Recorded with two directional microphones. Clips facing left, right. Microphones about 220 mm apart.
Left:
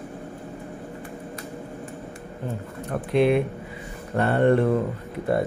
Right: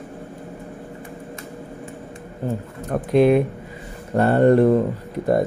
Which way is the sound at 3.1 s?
40° right (ahead or behind).